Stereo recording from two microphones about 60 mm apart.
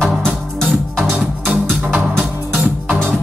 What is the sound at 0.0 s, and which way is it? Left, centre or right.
Music, centre.